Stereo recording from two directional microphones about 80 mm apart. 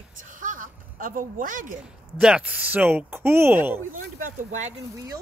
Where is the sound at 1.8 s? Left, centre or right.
Centre; by 3.8 s right.